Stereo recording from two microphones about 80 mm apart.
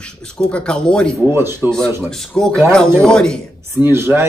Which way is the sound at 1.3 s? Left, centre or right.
Right.